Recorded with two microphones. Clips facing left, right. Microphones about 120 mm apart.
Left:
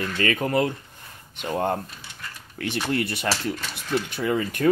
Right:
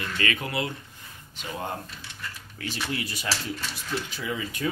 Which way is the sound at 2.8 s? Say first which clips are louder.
Left 7 dB; 55° left (ahead or behind).